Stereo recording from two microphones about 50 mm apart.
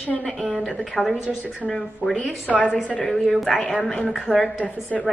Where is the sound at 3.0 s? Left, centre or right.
Centre.